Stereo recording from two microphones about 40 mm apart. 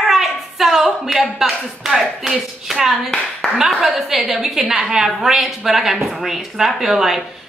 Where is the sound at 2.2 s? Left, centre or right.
Centre.